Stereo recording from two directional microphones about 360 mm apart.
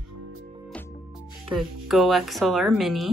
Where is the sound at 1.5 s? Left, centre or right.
Centre.